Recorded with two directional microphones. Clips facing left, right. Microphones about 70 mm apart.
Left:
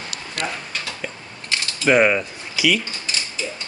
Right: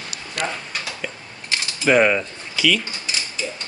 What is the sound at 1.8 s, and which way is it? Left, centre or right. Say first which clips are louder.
Speech: even; centre.